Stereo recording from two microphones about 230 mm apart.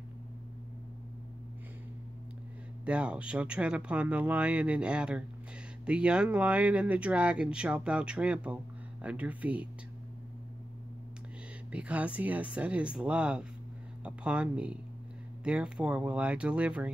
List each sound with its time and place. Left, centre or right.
2.8 s speech: centre
11.7 s speech: centre